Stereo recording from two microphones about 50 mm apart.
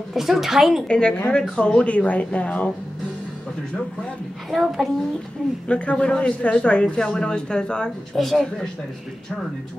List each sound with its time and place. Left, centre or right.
0.1 s speech: centre
0.8 s a man's voice: centre
4.5 s a child's voice: centre
5.7 s a man's voice: left
8.2 s a child's voice: centre